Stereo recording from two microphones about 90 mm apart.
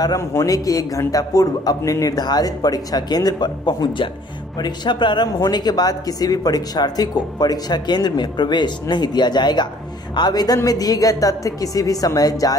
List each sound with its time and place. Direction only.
0.0 s speech: 40° left (ahead or behind)